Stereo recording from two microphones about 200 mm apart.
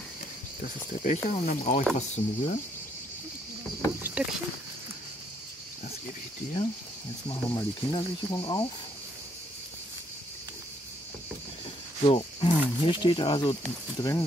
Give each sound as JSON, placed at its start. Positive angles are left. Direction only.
{"t": 0.6, "sound": "speech", "side_deg": 35}
{"t": 4.0, "sound": "a sound", "side_deg": -5}
{"t": 7.2, "sound": "speech", "side_deg": 20}
{"t": 12.0, "sound": "speech", "side_deg": 30}